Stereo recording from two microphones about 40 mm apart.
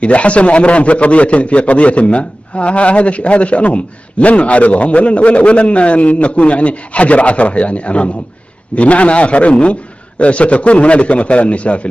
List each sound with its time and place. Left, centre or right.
0.0 s a man's voice: left